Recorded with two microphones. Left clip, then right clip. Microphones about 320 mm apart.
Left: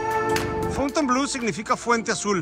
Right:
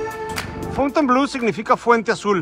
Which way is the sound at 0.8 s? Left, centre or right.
Centre.